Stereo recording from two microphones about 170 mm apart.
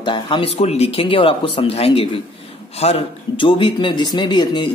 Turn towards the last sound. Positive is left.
turn(degrees=25)  # may be behind; listen again after turning